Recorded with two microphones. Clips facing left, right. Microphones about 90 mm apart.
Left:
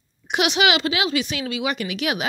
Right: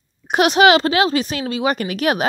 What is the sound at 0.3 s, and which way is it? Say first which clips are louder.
Speech: right 7 dB; 40° right (ahead or behind).